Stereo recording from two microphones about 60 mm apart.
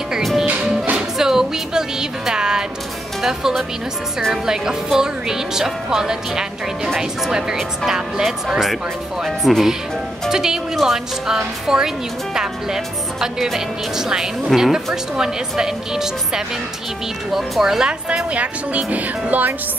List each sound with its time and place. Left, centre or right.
0.2 s music: centre
3.2 s speech: centre
18.3 s speech: right